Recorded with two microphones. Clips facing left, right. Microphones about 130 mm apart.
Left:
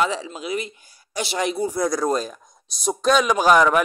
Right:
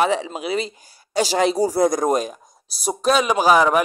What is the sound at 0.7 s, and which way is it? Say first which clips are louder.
Speech: right 4 dB; 30° right (ahead or behind).